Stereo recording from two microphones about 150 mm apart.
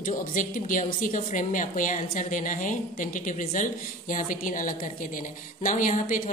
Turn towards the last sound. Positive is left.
turn(degrees=60)  # may be behind; listen again after turning